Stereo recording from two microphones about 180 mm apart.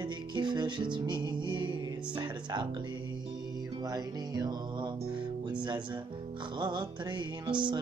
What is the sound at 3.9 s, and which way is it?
Music, 20° right (ahead or behind).